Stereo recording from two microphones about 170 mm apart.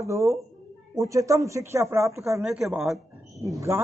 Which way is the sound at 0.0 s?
15° right (ahead or behind).